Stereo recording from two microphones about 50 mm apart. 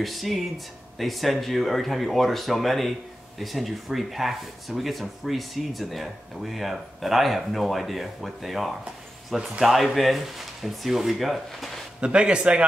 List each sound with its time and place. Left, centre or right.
0.0 s speech: centre
12.0 s a man's voice: right